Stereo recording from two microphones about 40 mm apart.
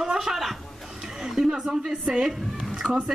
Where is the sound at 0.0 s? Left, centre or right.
Centre.